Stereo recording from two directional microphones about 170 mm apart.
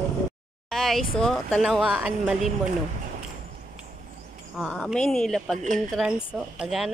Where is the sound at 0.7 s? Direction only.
Centre (ahead or behind).